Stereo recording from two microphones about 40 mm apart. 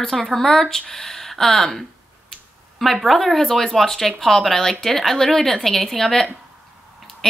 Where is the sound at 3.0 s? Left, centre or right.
Centre.